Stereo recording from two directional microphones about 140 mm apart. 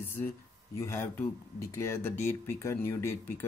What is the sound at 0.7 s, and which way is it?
Speech, 20° left (ahead or behind).